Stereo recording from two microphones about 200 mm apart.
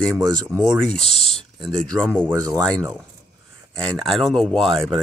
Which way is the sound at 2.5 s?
5° left (ahead or behind).